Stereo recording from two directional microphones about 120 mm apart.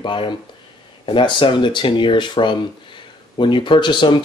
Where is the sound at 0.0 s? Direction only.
45° left (ahead or behind).